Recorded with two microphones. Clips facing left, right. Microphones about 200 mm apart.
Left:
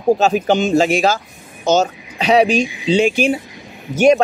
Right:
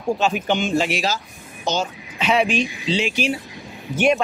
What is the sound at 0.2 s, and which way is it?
Speech, 40° left (ahead or behind).